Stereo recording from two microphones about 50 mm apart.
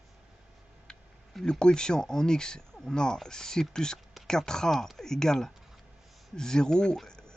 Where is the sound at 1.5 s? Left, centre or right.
Centre.